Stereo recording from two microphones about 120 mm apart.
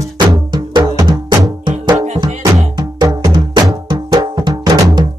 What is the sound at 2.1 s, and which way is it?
Music, 35° right (ahead or behind).